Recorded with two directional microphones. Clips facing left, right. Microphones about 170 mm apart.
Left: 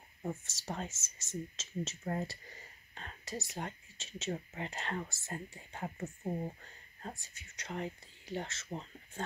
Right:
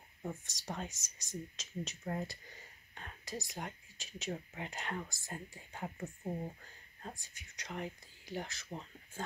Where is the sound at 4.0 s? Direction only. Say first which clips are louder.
Left 3 dB; 25° left (ahead or behind).